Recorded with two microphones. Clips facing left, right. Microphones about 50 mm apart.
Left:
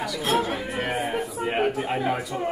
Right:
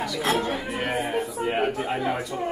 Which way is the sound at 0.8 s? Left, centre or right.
Centre.